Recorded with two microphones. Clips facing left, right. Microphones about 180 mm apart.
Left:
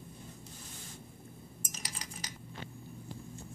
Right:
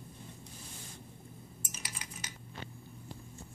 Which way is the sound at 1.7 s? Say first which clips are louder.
Left 1 dB; 35° left (ahead or behind).